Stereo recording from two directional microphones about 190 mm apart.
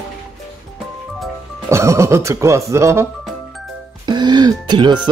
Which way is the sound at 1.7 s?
15° right (ahead or behind).